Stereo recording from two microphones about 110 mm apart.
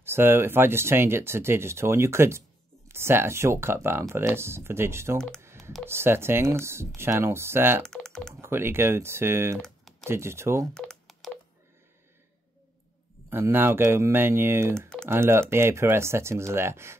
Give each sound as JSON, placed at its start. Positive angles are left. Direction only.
{"t": 0.0, "sound": "speech", "side_deg": -20}
{"t": 5.4, "sound": "telephone dialing", "side_deg": -25}
{"t": 5.9, "sound": "speech", "side_deg": -20}
{"t": 7.8, "sound": "speech", "side_deg": 5}
{"t": 8.4, "sound": "speech", "side_deg": -20}
{"t": 9.6, "sound": "typing", "side_deg": 0}
{"t": 10.0, "sound": "speech", "side_deg": -25}
{"t": 10.7, "sound": "telephone dialing", "side_deg": 5}
{"t": 13.3, "sound": "speech", "side_deg": -20}